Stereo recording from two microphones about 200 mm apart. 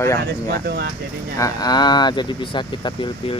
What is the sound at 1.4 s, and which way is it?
Speech, 20° left (ahead or behind).